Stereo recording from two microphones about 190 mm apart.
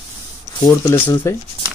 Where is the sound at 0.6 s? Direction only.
15° left (ahead or behind).